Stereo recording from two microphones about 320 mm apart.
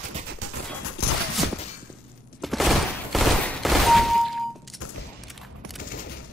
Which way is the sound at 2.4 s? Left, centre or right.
Centre.